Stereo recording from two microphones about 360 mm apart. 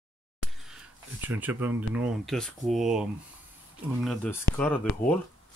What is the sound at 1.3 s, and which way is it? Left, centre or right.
Speech, centre.